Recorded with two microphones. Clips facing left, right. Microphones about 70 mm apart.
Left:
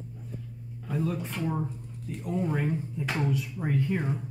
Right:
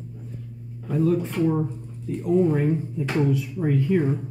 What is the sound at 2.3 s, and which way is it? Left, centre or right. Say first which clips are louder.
Speech: right 10 dB; centre.